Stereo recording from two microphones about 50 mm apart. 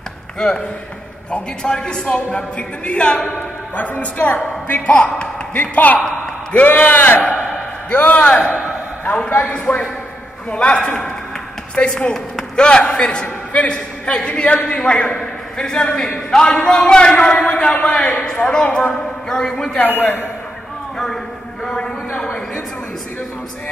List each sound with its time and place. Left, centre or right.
0.4 s a woman's voice: centre
3.7 s a woman's voice: left
4.9 s a man's voice: centre
5.5 s a woman's voice: left; by 19.8 s centre
19.8 s a man's voice: left
21.6 s a woman's voice: centre